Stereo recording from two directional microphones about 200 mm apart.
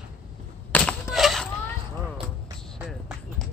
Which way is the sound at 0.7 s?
Centre (ahead or behind).